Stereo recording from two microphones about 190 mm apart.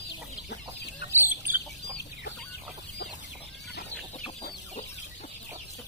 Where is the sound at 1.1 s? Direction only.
10° right (ahead or behind).